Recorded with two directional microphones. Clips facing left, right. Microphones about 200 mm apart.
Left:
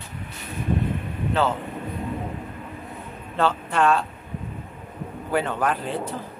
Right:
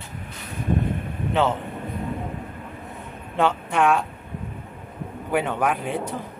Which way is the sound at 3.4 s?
15° right (ahead or behind).